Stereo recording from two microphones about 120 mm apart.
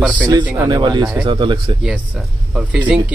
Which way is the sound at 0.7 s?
40° right (ahead or behind).